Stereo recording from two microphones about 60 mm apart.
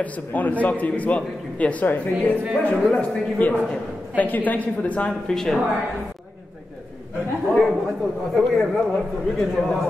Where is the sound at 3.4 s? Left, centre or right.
Left.